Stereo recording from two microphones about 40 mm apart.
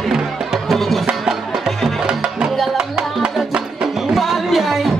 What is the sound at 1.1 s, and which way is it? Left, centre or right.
Music, centre.